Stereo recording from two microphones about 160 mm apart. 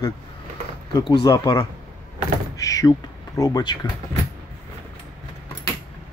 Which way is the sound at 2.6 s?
20° left (ahead or behind).